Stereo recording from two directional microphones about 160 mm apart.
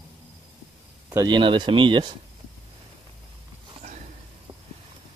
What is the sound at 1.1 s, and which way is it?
Speech, 25° right (ahead or behind).